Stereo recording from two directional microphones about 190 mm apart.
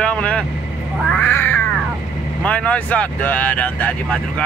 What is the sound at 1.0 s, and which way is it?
Cat, 5° left (ahead or behind).